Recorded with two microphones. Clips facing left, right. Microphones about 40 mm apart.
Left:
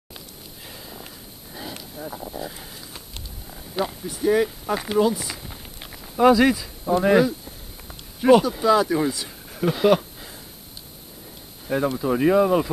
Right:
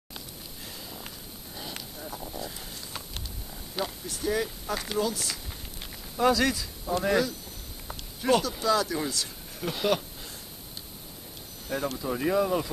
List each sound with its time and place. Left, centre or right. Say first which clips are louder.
0.7 s a sound: left 3 dB; centre
2.0 s wild animals: left 7 dB; centre
3.4 s speech: left 7 dB; centre
11.6 s speech: left 8 dB; left